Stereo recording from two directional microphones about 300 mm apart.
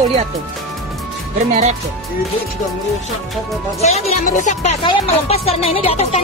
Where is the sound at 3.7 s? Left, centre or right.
Left.